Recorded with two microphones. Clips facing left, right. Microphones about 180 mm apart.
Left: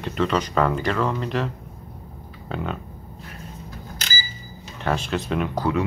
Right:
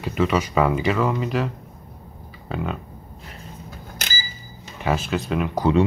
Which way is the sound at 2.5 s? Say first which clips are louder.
Right 1 dB; centre (ahead or behind).